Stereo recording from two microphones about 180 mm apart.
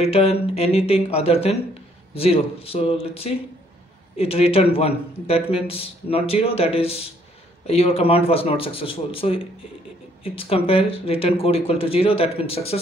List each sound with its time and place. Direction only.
0.0 s a man's voice: 35° left (ahead or behind)